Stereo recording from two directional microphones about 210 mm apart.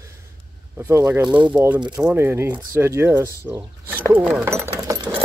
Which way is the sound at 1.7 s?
20° right (ahead or behind).